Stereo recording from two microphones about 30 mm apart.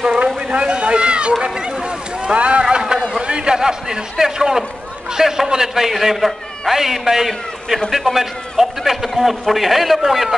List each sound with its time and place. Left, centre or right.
0.5 s cat: right
2.3 s speech: right
2.6 s a sound: right
3.5 s a man's voice: right